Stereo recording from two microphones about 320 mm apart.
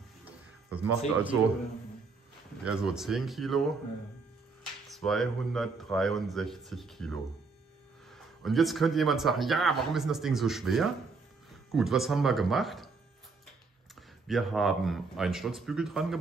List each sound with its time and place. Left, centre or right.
0.7 s speech: centre
2.6 s speech: centre
4.9 s speech: centre
13.9 s speech: centre